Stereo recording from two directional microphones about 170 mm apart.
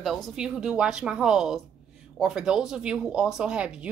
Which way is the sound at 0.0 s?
Centre (ahead or behind).